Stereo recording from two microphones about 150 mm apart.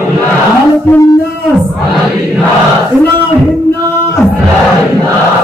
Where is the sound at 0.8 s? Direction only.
15° left (ahead or behind).